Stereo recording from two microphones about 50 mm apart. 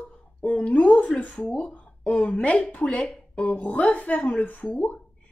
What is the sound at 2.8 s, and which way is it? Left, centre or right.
Speech, centre.